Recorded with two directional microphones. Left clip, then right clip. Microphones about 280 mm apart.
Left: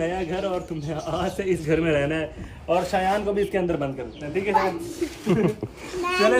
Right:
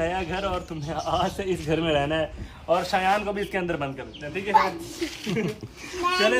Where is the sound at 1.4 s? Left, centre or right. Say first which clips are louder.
Left 3 dB; right.